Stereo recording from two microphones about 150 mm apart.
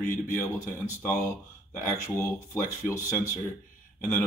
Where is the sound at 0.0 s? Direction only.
65° left (ahead or behind).